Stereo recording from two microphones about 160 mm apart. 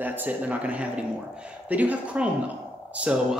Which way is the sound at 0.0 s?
10° right (ahead or behind).